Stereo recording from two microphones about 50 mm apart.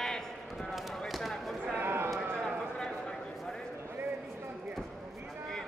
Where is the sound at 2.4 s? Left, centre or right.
Centre.